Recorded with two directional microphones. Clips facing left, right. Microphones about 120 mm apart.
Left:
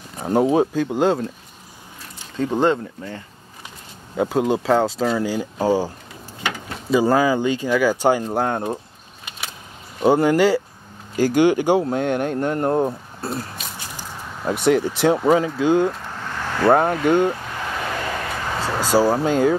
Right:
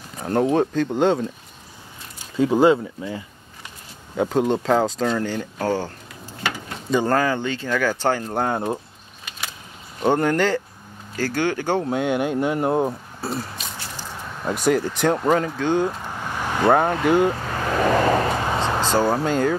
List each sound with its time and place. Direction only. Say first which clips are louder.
0.2 s speech: left 2 dB; 5° left (ahead or behind)
2.3 s speech: right 3 dB; 5° right (ahead or behind)
4.2 s speech: left 1 dB; 5° left (ahead or behind)
8.2 s speech: left 1 dB; centre (ahead or behind)
10.0 s speech: left 4 dB; 5° left (ahead or behind)
11.8 s speech: left 1 dB; centre (ahead or behind)
13.7 s squish: even; 15° left (ahead or behind)
14.5 s speech: left 2 dB; centre (ahead or behind)
16.2 s vehicle: right 1 dB; 15° right (ahead or behind)
17.0 s speech: left 1 dB; 5° right (ahead or behind)
17.7 s a sound: right 10 dB; 45° right (ahead or behind)
18.6 s speech: left 5 dB; 10° left (ahead or behind)